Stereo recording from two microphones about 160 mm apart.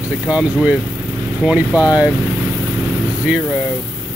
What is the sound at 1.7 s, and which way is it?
Speech, 20° left (ahead or behind).